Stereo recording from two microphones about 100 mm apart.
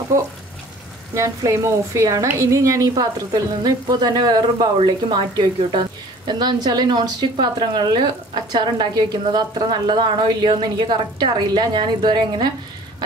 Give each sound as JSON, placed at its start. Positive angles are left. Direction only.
{"t": 1.1, "sound": "a woman's voice", "side_deg": -30}